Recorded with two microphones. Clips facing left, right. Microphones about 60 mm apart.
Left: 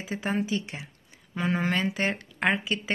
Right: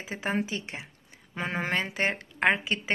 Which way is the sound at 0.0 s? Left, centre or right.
Right.